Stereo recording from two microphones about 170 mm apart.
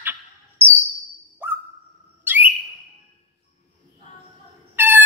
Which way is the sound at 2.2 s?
10° right (ahead or behind).